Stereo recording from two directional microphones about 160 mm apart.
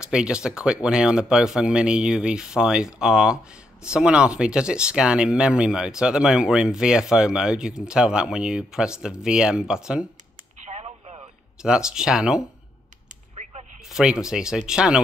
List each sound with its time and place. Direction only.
0.0 s speech: 5° right (ahead or behind)
10.6 s radio: 45° right (ahead or behind)
11.6 s speech: 5° right (ahead or behind)
13.4 s a sound: 45° right (ahead or behind)
13.9 s speech: 5° right (ahead or behind)